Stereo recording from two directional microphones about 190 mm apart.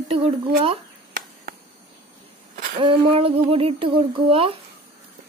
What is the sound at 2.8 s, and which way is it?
Speech, 30° right (ahead or behind).